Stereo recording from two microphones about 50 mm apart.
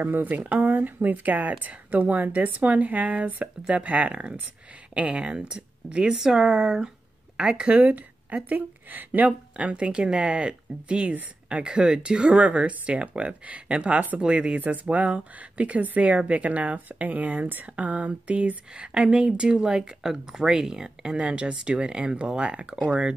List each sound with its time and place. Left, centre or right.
0.0 s speech: right